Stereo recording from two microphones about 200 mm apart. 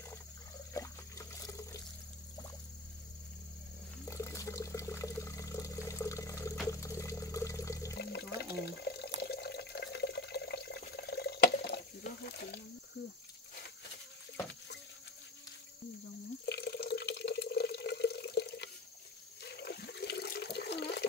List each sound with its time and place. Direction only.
0.7 s water: 15° left (ahead or behind)
4.1 s water: 15° left (ahead or behind)
7.9 s water: 55° left (ahead or behind)
16.4 s water: 55° left (ahead or behind)